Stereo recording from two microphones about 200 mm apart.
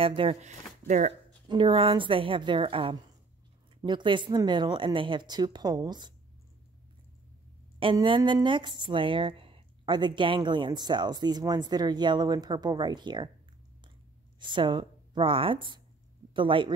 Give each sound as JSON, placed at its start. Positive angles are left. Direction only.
{"t": 0.0, "sound": "speech", "side_deg": -25}
{"t": 1.5, "sound": "speech", "side_deg": -25}
{"t": 7.8, "sound": "speech", "side_deg": -25}
{"t": 14.4, "sound": "speech", "side_deg": -25}